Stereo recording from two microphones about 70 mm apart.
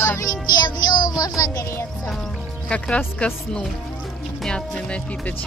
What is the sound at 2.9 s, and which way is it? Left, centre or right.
Speech, left.